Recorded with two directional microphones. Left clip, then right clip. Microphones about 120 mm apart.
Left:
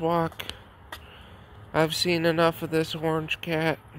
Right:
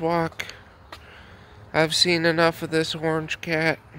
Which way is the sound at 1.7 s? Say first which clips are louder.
Right 4 dB; 20° right (ahead or behind).